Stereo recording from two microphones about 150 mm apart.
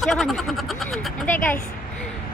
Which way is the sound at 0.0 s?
Centre (ahead or behind).